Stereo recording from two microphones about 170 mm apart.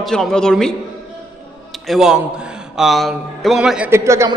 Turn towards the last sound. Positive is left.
turn(degrees=-15)  # may be behind; listen again after turning